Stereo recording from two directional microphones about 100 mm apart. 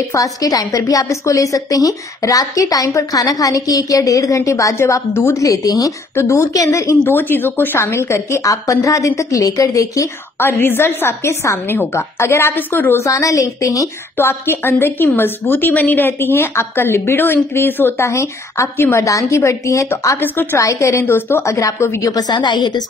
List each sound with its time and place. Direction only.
0.1 s a woman's voice: 35° left (ahead or behind); by 13.0 s 20° left (ahead or behind)
13.0 s a woman's voice: 30° left (ahead or behind)
22.1 s a woman's voice: 50° left (ahead or behind)